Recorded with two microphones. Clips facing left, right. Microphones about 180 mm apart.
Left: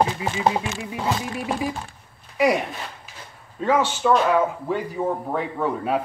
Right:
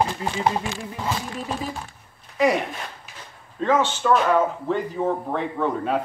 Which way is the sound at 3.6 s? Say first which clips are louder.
Even; 10° left (ahead or behind).